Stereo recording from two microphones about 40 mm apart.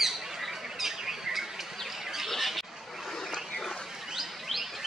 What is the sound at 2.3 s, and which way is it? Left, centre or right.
Squawk, centre.